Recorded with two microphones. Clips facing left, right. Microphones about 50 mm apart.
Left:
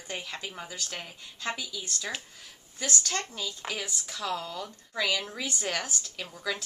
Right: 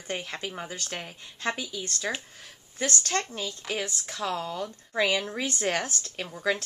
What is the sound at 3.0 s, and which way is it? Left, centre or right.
Speech, right.